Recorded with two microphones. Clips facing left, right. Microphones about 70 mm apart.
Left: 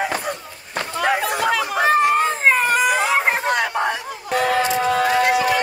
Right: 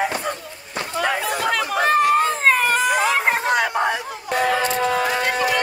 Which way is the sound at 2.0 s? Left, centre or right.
Centre.